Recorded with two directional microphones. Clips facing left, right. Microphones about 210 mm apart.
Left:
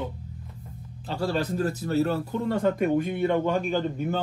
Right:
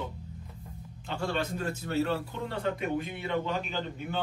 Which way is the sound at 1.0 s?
35° left (ahead or behind).